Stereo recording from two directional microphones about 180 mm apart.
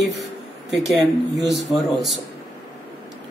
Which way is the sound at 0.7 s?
Centre (ahead or behind).